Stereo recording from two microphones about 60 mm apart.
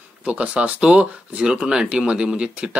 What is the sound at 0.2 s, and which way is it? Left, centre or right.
Speech, right.